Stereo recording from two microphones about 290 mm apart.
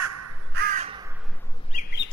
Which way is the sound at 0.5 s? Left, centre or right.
Right.